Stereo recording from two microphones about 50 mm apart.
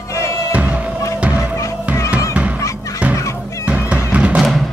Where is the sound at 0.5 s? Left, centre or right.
Right.